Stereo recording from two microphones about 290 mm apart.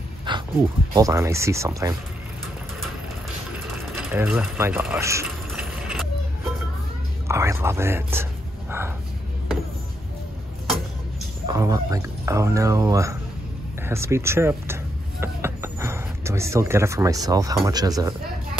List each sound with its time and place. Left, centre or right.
0.3 s dog: centre
0.9 s speech: centre
3.9 s mechanisms: centre
7.2 s a sound: centre
11.4 s speech: centre